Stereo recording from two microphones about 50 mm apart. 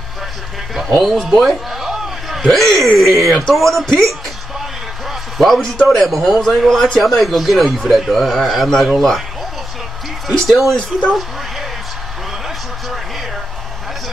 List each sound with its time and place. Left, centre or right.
0.7 s a man's voice: centre
1.8 s a sound: centre
3.3 s a man's voice: centre
4.6 s a sound: centre
5.9 s a man's voice: centre
10.2 s speech: centre
10.8 s speech: left